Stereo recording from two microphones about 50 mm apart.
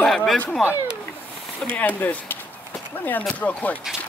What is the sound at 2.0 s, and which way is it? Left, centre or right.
Speech, left.